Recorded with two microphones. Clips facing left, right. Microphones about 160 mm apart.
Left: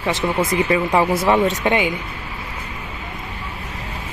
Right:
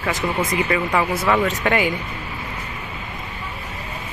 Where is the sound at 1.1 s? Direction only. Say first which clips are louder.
Left 3 dB; 15° left (ahead or behind).